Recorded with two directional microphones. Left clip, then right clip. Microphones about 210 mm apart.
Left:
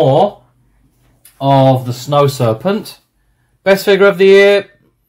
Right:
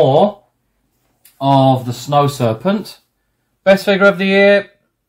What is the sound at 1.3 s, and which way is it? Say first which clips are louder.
Speech: left 2 dB; 20° left (ahead or behind).